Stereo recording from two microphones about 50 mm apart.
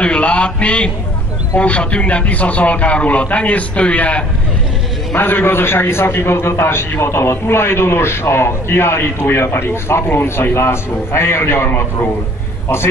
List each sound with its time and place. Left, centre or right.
0.0 s a sound: left
1.6 s a man's voice: left
5.1 s a man's voice: left